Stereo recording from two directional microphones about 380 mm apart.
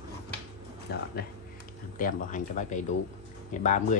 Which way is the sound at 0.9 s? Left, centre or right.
Left.